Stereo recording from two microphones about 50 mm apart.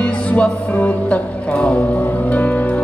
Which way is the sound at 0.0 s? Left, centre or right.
Left.